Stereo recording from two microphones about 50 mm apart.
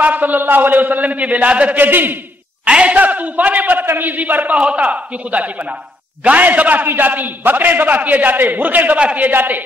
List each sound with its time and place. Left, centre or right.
0.0 s a man's voice: right
1.8 s a man's voice: right
2.6 s a man's voice: right